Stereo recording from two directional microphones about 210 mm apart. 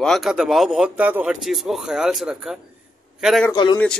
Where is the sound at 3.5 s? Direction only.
20° left (ahead or behind).